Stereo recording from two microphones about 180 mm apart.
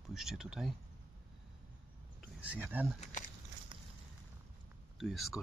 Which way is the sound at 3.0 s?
45° left (ahead or behind).